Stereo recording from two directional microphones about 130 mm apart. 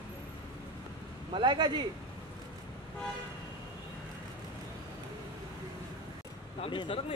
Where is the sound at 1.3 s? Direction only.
35° right (ahead or behind).